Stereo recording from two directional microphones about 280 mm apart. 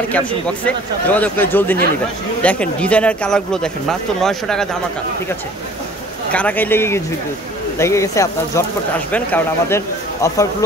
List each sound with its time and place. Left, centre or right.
0.7 s speech: centre
6.3 s speech: centre